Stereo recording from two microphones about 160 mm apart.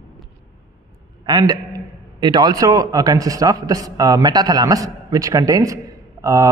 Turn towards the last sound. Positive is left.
turn(degrees=-20)  # may be behind; listen again after turning